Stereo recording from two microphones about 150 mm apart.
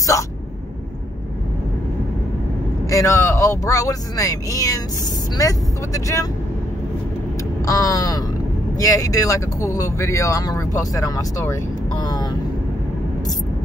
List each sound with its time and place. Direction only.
2.9 s speech: 20° left (ahead or behind)
7.6 s speech: 20° left (ahead or behind)